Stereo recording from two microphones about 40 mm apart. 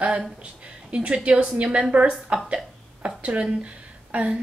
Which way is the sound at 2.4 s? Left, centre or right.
Right.